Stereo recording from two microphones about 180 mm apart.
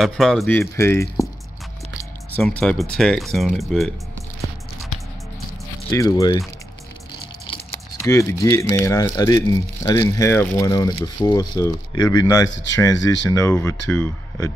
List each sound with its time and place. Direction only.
0.0 s speech: centre (ahead or behind)
2.3 s speech: 5° left (ahead or behind)
5.9 s speech: 20° left (ahead or behind)
8.0 s speech: 15° left (ahead or behind)
12.4 s speech: 90° left
12.8 s speech: 15° left (ahead or behind)